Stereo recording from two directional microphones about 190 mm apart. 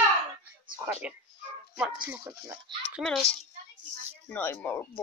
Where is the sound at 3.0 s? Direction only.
Centre (ahead or behind).